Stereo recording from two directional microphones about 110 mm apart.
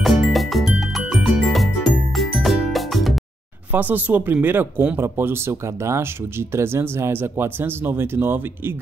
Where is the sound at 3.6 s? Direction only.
15° right (ahead or behind).